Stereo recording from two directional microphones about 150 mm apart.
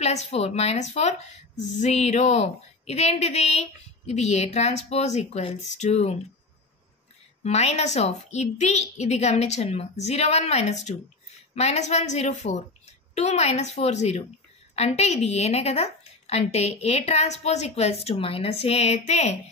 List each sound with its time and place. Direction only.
0.0 s a woman's voice: 45° left (ahead or behind)
7.4 s a woman's voice: 45° left (ahead or behind)